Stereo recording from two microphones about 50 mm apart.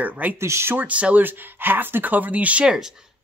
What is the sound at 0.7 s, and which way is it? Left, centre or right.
Speech, right.